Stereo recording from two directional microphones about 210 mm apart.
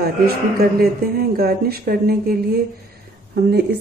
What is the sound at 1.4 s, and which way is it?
Speech, 45° right (ahead or behind).